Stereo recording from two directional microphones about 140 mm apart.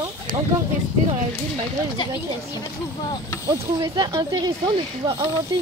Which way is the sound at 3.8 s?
30° right (ahead or behind).